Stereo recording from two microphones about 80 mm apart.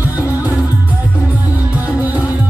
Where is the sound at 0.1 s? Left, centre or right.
Right.